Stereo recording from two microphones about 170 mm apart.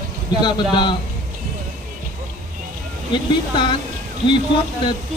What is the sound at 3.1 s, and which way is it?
Speech, 30° left (ahead or behind).